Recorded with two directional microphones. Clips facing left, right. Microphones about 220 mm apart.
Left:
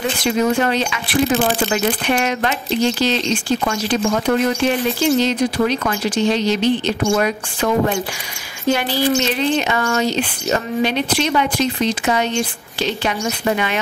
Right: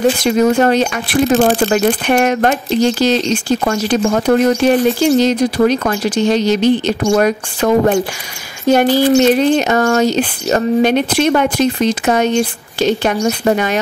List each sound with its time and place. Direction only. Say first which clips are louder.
0.2 s speech: right 5 dB; 45° right (ahead or behind)